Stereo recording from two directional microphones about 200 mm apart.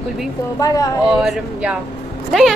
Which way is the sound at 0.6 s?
20° left (ahead or behind).